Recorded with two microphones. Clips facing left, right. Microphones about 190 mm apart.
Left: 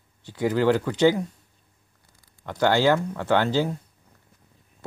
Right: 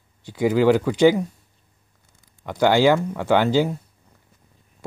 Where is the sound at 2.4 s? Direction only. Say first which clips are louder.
Right 4 dB; 10° right (ahead or behind).